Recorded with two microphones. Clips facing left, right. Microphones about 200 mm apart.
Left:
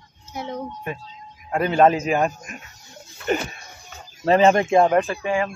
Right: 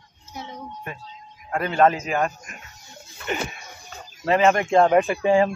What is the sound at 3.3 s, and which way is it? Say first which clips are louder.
Speech: left 5 dB; 40° left (ahead or behind).